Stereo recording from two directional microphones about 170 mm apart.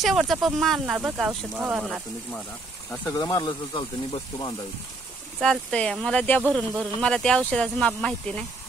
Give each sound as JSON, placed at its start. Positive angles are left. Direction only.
{"t": 0.0, "sound": "speech", "side_deg": 0}
{"t": 2.9, "sound": "speech", "side_deg": 15}
{"t": 5.4, "sound": "speech", "side_deg": 5}